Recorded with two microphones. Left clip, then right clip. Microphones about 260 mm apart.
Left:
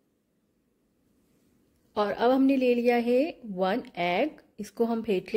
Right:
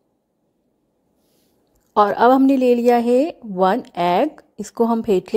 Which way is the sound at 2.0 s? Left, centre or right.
Centre.